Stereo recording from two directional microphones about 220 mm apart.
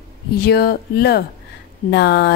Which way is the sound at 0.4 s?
45° left (ahead or behind).